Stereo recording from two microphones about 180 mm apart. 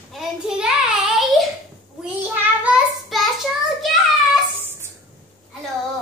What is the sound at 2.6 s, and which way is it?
Child singing, 5° right (ahead or behind).